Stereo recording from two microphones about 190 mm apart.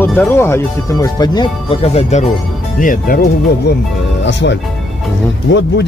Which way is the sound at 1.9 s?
35° left (ahead or behind).